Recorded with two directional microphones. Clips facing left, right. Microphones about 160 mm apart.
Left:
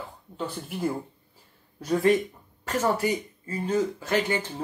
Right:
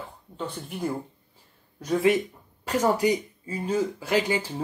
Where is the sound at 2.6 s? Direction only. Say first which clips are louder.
Right 3 dB; 15° right (ahead or behind).